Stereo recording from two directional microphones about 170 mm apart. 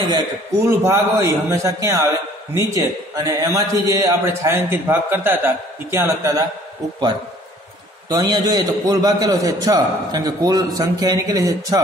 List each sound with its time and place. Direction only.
0.7 s a man's voice: 15° right (ahead or behind)
8.1 s a man's voice: 25° right (ahead or behind)